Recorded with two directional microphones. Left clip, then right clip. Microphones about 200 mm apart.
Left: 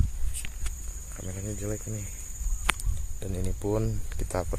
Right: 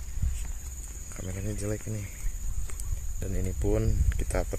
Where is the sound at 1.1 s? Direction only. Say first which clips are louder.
Even; 10° right (ahead or behind).